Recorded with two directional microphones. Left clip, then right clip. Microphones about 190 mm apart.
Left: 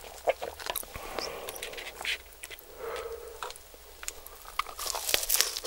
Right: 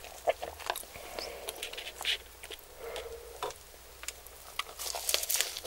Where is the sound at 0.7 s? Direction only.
55° left (ahead or behind).